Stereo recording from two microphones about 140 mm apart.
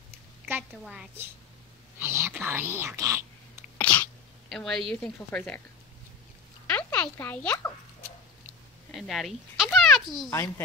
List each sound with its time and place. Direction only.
2.0 s speech: 15° right (ahead or behind)
3.7 s sneeze: 10° left (ahead or behind)
6.7 s a child's voice: 10° left (ahead or behind)
8.9 s speech: centre (ahead or behind)